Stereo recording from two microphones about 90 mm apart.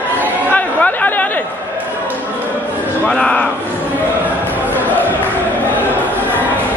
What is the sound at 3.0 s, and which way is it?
Speech, 10° left (ahead or behind).